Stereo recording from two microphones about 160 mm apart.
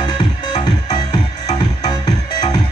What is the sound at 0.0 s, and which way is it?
Music, 25° left (ahead or behind).